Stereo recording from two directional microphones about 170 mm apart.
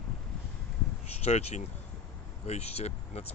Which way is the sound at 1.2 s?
40° left (ahead or behind).